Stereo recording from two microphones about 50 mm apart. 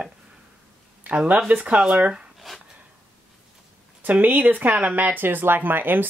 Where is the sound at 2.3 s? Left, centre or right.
Centre.